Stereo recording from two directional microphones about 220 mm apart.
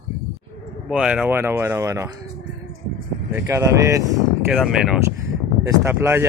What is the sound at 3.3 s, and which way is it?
Speech, 10° right (ahead or behind).